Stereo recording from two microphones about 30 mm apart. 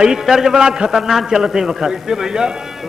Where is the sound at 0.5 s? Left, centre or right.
Right.